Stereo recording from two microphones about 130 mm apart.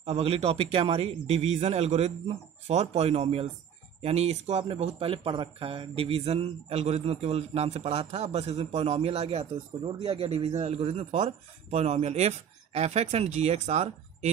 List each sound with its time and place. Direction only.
0.0 s speech: 50° right (ahead or behind)